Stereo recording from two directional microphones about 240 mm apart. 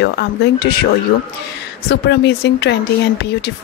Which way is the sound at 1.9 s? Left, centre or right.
Left.